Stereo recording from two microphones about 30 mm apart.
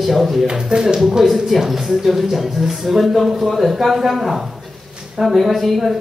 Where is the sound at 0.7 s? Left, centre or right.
Right.